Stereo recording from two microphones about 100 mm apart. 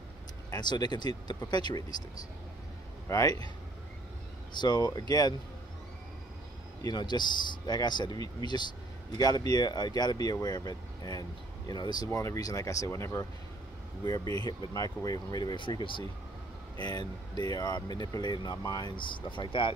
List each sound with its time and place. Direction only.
0.5 s speech: 45° left (ahead or behind)
3.1 s a man's voice: 30° left (ahead or behind)
4.6 s speech: 45° left (ahead or behind)
6.8 s speech: 45° left (ahead or behind)
12.1 s speech: 30° left (ahead or behind); by 18.6 s 45° left (ahead or behind)
18.6 s speech: 35° left (ahead or behind)
18.9 s speech: 50° left (ahead or behind)